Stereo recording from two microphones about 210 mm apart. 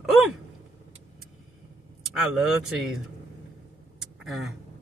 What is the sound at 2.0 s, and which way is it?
Speech, centre (ahead or behind).